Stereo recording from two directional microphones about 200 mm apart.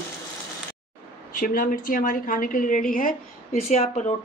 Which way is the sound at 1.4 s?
45° left (ahead or behind).